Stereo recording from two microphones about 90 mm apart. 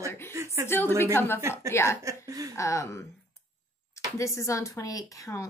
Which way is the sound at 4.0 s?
35° left (ahead or behind).